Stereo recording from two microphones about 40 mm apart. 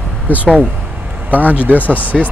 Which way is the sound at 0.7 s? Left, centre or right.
Right.